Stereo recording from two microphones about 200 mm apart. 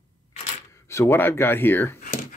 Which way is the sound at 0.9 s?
10° left (ahead or behind).